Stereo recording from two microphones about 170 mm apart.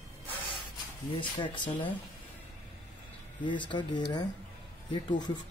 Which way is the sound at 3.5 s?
30° left (ahead or behind).